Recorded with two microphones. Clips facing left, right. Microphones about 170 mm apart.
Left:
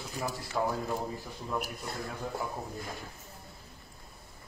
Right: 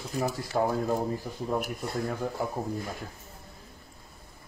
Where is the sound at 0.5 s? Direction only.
45° right (ahead or behind).